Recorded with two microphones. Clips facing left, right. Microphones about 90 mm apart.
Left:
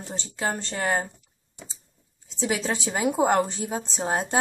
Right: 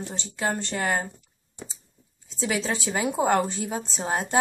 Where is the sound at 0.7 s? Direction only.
20° left (ahead or behind).